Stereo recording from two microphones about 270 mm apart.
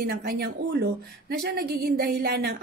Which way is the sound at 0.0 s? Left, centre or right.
Right.